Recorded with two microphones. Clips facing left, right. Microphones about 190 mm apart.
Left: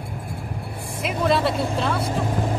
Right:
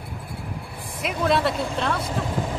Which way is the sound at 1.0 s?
Centre (ahead or behind).